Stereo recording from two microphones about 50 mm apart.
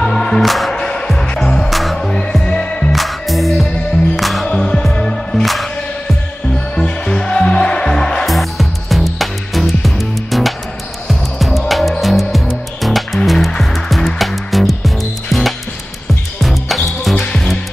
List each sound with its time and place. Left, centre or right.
0.0 s music: centre
0.4 s music: centre
0.7 s music: centre
2.0 s music: centre
2.9 s music: centre
4.5 s music: centre
6.7 s music: centre
8.3 s music: centre
16.3 s music: centre
17.1 s music: centre